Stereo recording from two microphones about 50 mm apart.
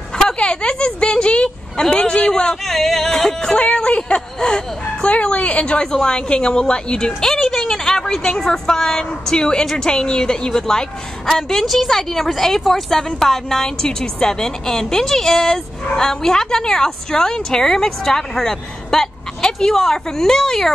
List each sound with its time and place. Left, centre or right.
0.1 s a sound: centre
2.7 s yodeling: centre
3.5 s a woman's voice: left